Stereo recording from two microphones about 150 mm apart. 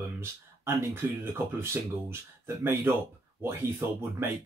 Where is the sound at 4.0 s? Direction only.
15° right (ahead or behind).